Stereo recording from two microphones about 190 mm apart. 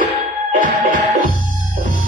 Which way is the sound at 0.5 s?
45° right (ahead or behind).